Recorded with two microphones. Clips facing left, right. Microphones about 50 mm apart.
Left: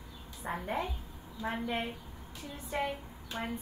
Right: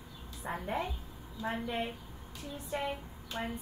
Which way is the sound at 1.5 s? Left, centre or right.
Left.